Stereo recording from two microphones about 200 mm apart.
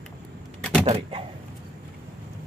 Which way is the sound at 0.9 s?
25° right (ahead or behind).